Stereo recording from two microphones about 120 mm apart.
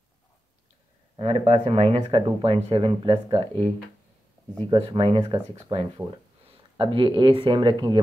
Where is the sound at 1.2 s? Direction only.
60° right (ahead or behind).